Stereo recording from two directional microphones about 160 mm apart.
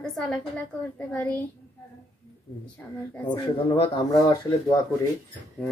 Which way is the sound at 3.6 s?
35° left (ahead or behind).